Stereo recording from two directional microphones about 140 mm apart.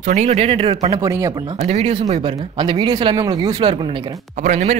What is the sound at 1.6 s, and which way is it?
Speech, 50° right (ahead or behind).